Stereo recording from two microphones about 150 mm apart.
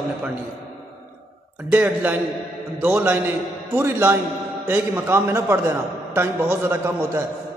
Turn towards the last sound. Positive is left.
turn(degrees=-15)  # may be behind; listen again after turning